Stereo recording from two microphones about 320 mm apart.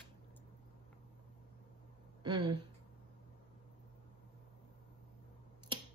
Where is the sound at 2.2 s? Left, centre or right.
Centre.